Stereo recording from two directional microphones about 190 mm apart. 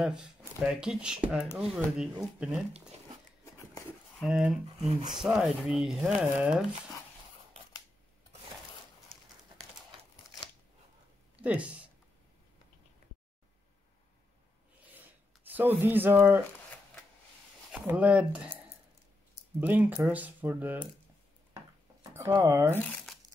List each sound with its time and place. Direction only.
0.0 s speech: 5° right (ahead or behind)
4.2 s speech: 5° right (ahead or behind)
4.7 s speech: 30° right (ahead or behind)
5.1 s speech: 5° right (ahead or behind)
11.4 s speech: 5° right (ahead or behind)
15.5 s speech: 10° right (ahead or behind)
17.6 s speech: 5° right (ahead or behind)
19.6 s speech: 10° right (ahead or behind)
22.3 s speech: 15° right (ahead or behind)